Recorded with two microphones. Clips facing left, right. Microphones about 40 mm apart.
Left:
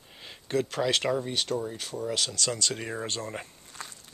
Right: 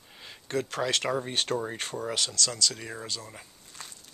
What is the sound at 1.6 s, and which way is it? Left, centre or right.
Speech, right.